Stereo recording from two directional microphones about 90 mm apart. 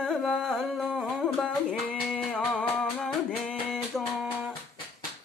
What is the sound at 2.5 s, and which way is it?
Music, 10° left (ahead or behind).